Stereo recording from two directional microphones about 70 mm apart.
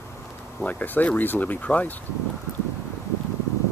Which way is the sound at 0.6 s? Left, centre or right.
Left.